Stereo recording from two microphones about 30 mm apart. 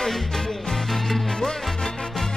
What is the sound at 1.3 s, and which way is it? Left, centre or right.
Salsa music, centre.